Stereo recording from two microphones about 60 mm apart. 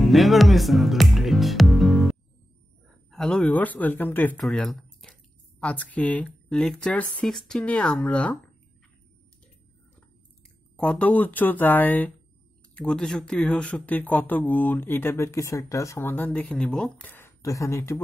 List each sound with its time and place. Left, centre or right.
0.0 s speech: centre
3.4 s speech: left
4.4 s speech: centre
5.0 s a sound: centre
5.6 s speech: left
7.2 s speech: centre
7.6 s speech: left
10.8 s speech: left
12.7 s speech: centre
13.8 s speech: left
16.0 s speech: left
16.5 s speech: centre
17.0 s a sound: left
17.4 s speech: left